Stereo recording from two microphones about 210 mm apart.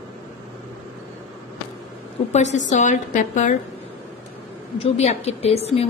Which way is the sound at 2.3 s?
35° left (ahead or behind).